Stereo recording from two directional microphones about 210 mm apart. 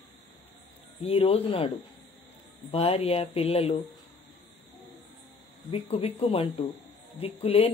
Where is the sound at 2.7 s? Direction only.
25° left (ahead or behind).